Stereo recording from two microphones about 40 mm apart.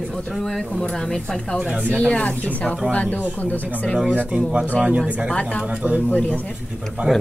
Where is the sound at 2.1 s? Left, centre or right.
Left.